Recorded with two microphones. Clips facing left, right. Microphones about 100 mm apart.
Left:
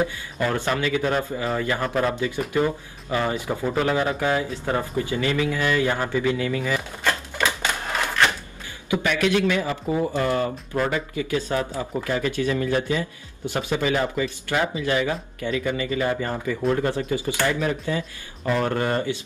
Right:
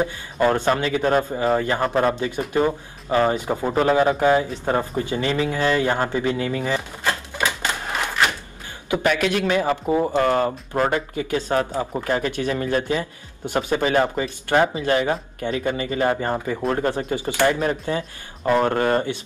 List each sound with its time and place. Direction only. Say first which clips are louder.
0.0 s speech: right 4 dB; 25° right (ahead or behind)
9.0 s speech: right 1 dB; 45° right (ahead or behind)
11.2 s speech: right 4 dB; 25° right (ahead or behind)
13.5 s speech: right 4 dB; 20° right (ahead or behind)
13.7 s speech: right 3 dB; 40° right (ahead or behind)
15.4 s speech: right 1 dB; 50° right (ahead or behind)
15.7 s speech: right 4 dB; 35° right (ahead or behind)